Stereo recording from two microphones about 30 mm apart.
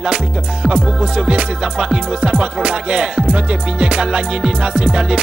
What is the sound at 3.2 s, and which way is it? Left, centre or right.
Music, right.